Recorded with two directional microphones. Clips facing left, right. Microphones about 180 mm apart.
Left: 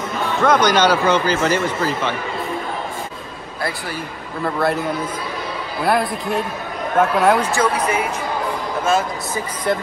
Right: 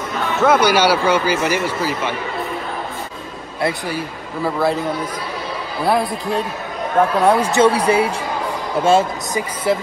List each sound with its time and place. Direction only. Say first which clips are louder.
0.4 s a man's voice: right 1 dB; 5° right (ahead or behind)
3.9 s speech: right 3 dB; 5° right (ahead or behind)
5.9 s speech: right 1 dB; centre (ahead or behind)
7.5 s speech: right 5 dB; 30° right (ahead or behind)
9.7 s speech: right 2 dB; 5° right (ahead or behind)